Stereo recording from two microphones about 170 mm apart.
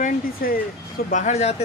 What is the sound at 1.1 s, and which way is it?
Speech, 45° left (ahead or behind).